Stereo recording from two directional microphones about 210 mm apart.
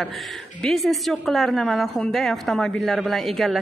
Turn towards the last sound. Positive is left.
turn(degrees=0)  # may be behind; listen again after turning